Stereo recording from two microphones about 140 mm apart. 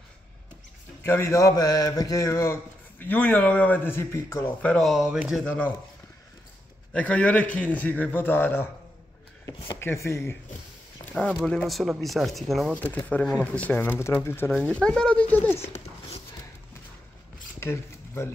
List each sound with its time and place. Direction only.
1.0 s a man's voice: 20° left (ahead or behind); by 5.4 s 5° right (ahead or behind)
5.4 s a man's voice: 5° left (ahead or behind)
6.9 s a man's voice: 10° left (ahead or behind)
11.4 s speech: 5° left (ahead or behind)
12.7 s a man's voice: 10° left (ahead or behind)
17.6 s a sound: 20° left (ahead or behind)